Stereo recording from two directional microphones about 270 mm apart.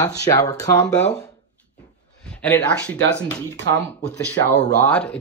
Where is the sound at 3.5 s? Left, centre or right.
Right.